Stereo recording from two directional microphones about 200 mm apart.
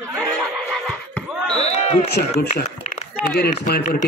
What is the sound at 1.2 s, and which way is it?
Chop, centre (ahead or behind).